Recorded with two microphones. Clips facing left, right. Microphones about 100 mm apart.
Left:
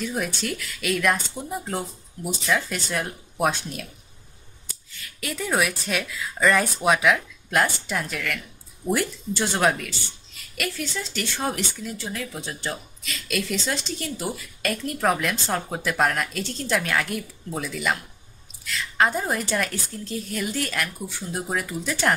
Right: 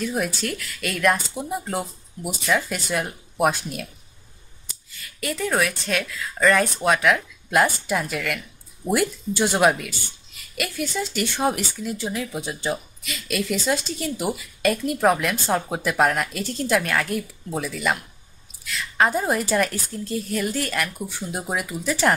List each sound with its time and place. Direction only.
0.0 s a woman's voice: centre (ahead or behind)
5.0 s a woman's voice: centre (ahead or behind); by 12.7 s 15° right (ahead or behind)
13.0 s a woman's voice: 5° right (ahead or behind)
21.1 s speech: 15° right (ahead or behind)